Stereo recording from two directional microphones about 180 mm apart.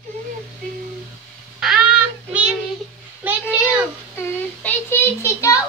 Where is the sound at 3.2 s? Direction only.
10° right (ahead or behind).